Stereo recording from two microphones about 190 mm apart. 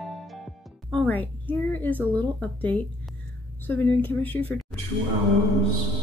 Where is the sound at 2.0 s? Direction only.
10° left (ahead or behind).